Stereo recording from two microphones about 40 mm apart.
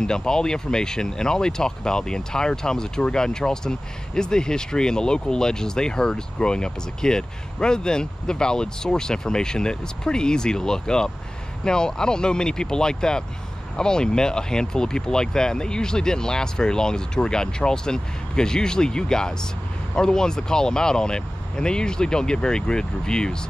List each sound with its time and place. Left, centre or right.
0.0 s speech: centre